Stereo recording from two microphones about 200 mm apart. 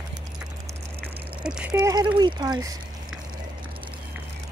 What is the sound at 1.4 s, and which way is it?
Speech, 5° right (ahead or behind).